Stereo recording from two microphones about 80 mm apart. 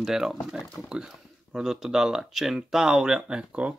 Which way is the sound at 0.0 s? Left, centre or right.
Centre.